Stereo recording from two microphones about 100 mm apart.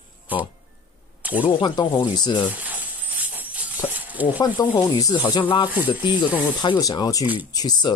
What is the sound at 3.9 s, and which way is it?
Speech, 15° right (ahead or behind).